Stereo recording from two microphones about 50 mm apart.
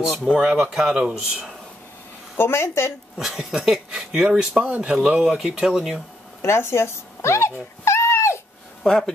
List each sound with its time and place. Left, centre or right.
0.0 s speech: centre
2.3 s a woman's voice: left
3.2 s speech: centre
6.4 s a sound: left
8.8 s a man's voice: centre